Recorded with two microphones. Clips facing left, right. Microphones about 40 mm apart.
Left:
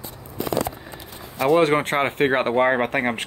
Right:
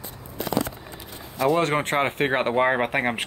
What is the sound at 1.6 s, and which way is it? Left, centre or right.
Speech, centre.